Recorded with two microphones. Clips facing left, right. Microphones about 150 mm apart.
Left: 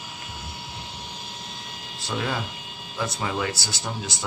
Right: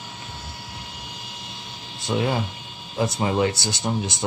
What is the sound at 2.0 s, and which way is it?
Speech, 25° right (ahead or behind).